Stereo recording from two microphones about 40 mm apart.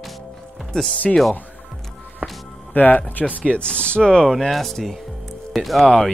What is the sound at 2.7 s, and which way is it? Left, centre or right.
Speech, left.